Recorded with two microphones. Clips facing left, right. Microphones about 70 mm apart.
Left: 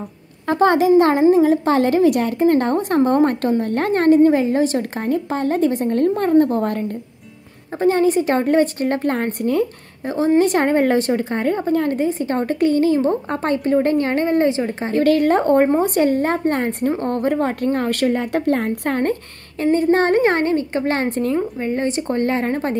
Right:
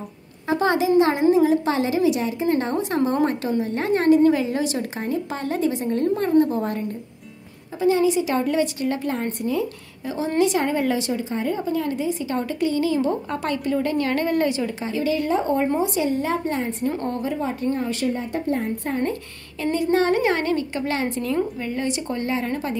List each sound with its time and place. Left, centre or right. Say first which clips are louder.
0.5 s a woman's voice: left 5 dB; left
15.0 s a woman's voice: left 7 dB; left
19.6 s a woman's voice: left 5 dB; left